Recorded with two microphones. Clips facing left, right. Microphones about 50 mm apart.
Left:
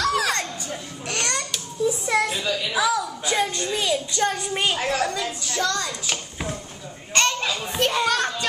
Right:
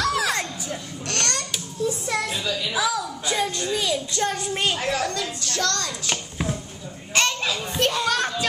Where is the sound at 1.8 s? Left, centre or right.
Centre.